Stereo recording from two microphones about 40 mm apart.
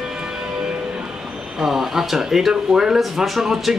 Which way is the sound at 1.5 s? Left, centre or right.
Centre.